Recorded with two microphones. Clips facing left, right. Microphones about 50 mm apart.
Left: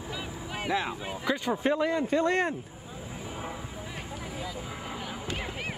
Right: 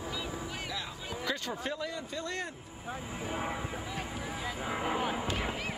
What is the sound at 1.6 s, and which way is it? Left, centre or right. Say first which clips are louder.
Speech: left 10 dB; left.